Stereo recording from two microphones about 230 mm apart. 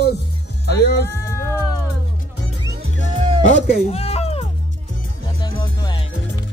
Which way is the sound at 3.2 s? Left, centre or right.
Right.